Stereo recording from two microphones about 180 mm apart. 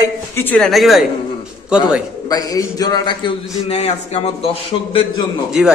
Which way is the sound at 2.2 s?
20° left (ahead or behind).